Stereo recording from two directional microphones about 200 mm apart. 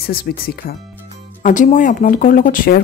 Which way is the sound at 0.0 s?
50° left (ahead or behind).